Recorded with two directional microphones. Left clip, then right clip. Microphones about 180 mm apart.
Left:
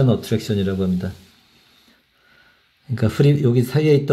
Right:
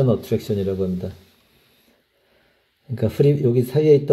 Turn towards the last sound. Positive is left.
turn(degrees=0)  # may be behind; listen again after turning